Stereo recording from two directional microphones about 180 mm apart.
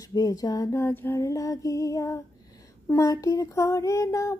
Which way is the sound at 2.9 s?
20° left (ahead or behind).